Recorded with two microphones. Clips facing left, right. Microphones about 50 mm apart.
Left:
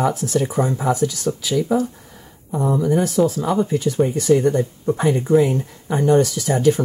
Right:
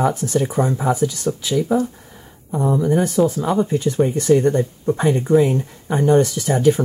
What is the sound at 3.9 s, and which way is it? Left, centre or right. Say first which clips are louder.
Speech: right 1 dB; centre.